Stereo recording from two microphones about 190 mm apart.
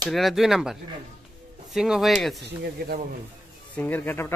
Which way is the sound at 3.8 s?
10° left (ahead or behind).